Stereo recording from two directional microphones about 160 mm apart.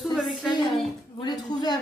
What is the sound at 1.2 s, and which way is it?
Speech, 25° left (ahead or behind).